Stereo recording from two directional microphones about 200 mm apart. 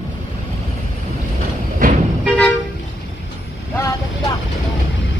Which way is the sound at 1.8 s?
45° right (ahead or behind).